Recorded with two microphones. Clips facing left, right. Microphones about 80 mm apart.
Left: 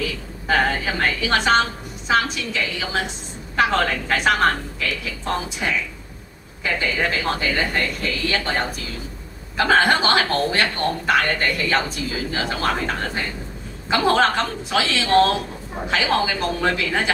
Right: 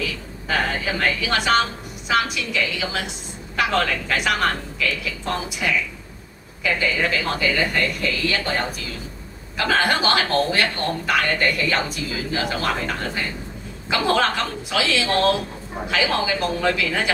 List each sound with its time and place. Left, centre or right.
0.5 s a woman's voice: left